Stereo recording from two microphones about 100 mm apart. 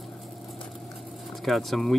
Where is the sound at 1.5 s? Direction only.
Centre (ahead or behind).